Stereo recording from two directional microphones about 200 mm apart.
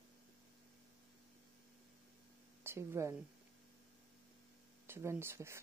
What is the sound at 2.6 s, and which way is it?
Speech, 15° right (ahead or behind).